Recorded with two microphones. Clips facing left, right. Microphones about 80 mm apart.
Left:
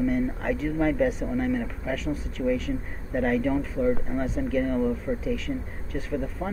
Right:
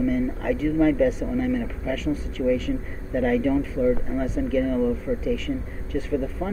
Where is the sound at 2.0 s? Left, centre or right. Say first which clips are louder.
Right 4 dB; centre.